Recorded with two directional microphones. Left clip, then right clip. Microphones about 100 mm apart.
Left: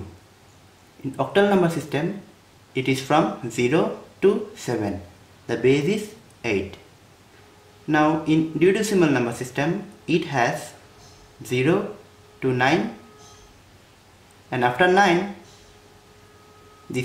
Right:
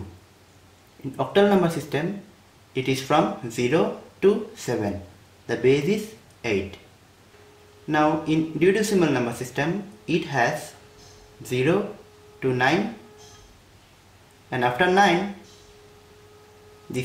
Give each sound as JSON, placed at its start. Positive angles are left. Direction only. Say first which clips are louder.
{"t": 1.1, "sound": "speech", "louder": "even", "side_deg": 15}
{"t": 7.9, "sound": "speech", "louder": "left 2 dB", "side_deg": 20}
{"t": 14.5, "sound": "speech", "louder": "left 2 dB", "side_deg": 20}